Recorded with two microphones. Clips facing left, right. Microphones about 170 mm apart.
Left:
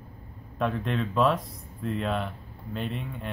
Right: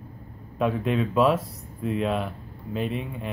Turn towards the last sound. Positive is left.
turn(degrees=-5)  # may be behind; listen again after turning